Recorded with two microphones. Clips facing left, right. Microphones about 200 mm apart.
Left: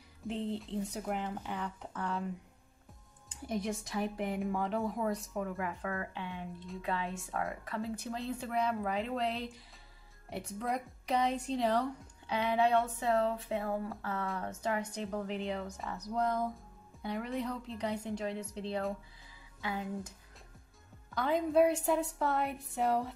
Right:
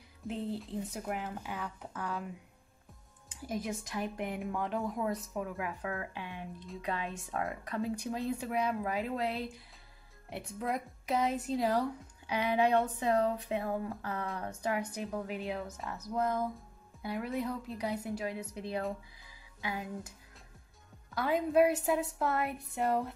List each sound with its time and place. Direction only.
0.3 s a woman's voice: 5° right (ahead or behind)
3.4 s a woman's voice: centre (ahead or behind)
5.8 s a woman's voice: 15° right (ahead or behind)
21.1 s a woman's voice: 5° right (ahead or behind)